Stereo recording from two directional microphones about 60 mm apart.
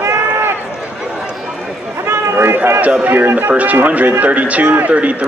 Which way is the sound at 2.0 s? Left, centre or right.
Right.